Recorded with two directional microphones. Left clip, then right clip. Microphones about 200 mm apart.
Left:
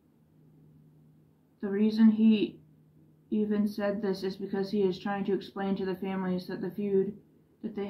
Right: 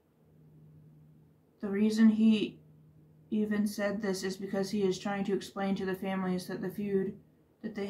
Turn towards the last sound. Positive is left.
turn(degrees=-15)  # may be behind; listen again after turning